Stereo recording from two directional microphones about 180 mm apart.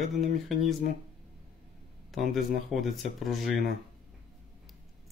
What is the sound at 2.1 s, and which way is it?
Speech, centre (ahead or behind).